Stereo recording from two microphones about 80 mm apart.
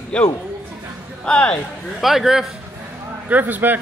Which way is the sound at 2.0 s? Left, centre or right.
Centre.